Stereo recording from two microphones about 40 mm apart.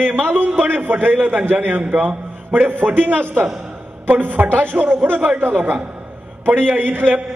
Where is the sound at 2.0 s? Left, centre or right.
Right.